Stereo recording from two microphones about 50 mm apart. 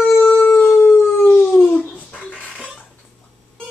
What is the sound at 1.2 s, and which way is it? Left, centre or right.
Dog, left.